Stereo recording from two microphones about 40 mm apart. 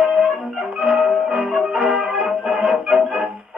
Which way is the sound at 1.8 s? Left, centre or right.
Right.